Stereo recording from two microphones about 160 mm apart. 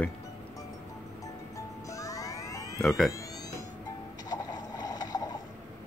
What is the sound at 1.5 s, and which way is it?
Music, 20° left (ahead or behind).